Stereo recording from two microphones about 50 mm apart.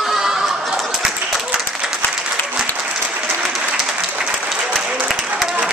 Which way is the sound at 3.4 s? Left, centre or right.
Centre.